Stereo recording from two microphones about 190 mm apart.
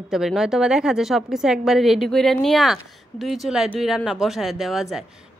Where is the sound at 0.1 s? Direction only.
Centre (ahead or behind).